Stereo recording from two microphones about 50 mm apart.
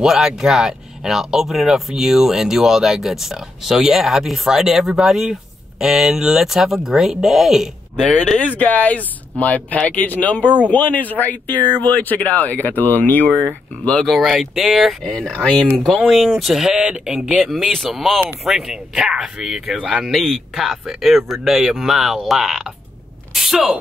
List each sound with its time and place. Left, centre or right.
0.0 s speech: centre
8.5 s speech: left
14.0 s speech: centre
16.1 s speech: centre
20.1 s speech: centre